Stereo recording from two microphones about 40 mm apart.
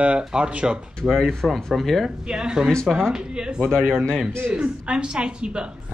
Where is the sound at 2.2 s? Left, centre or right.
Right.